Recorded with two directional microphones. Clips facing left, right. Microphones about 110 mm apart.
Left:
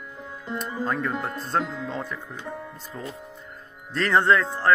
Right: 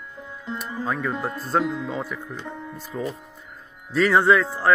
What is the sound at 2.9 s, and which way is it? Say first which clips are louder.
Speech: right 8 dB; 20° right (ahead or behind).